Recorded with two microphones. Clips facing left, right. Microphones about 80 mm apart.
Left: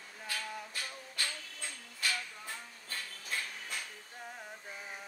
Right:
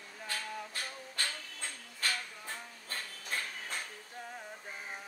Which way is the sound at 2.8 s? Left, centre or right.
Right.